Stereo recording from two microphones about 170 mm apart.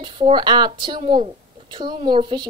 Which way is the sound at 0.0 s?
30° right (ahead or behind).